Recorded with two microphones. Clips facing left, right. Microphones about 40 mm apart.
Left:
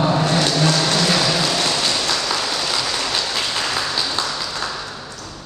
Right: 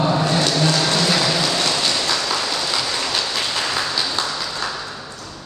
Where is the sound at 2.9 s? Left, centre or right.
Centre.